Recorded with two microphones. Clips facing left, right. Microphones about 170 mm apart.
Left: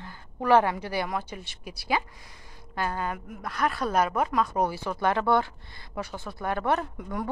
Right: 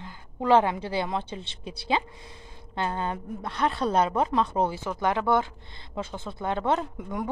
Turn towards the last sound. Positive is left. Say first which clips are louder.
# right 1 dB
turn(degrees=-20)  # may be behind; listen again after turning